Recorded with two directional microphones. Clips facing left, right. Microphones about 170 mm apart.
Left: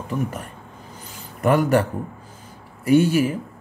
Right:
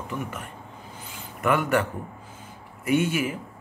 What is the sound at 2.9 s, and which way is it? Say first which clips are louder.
Speech: left 7 dB; 35° left (ahead or behind).